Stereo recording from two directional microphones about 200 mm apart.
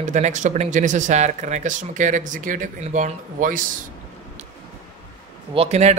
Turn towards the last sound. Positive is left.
turn(degrees=-35)  # may be behind; listen again after turning